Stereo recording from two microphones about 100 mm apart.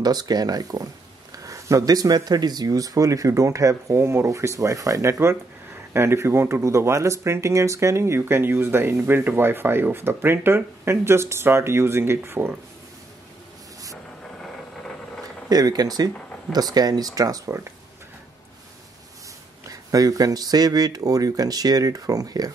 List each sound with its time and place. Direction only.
0.0 s speech: 40° right (ahead or behind); by 12.5 s 25° right (ahead or behind)
15.5 s speech: 40° right (ahead or behind)
19.7 s speech: 35° right (ahead or behind)